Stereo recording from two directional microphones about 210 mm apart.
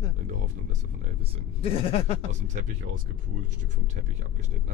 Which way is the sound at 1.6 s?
25° left (ahead or behind).